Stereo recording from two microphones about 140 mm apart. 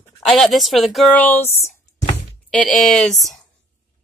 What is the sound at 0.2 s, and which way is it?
Speech, centre (ahead or behind).